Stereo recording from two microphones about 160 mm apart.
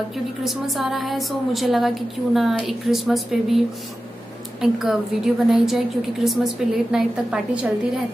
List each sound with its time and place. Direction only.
0.4 s a woman's voice: centre (ahead or behind)